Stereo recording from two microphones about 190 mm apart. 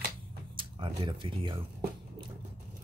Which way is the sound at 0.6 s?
25° right (ahead or behind).